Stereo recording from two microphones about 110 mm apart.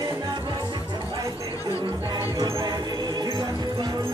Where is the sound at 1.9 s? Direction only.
40° right (ahead or behind).